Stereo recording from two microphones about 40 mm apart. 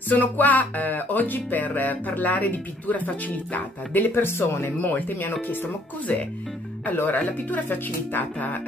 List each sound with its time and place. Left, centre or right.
0.1 s music: left
4.9 s speech: left
6.9 s music: left